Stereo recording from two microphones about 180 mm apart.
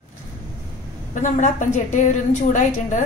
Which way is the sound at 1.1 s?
45° left (ahead or behind).